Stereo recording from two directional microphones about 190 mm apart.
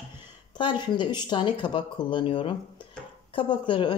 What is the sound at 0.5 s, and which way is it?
Speech, 25° left (ahead or behind).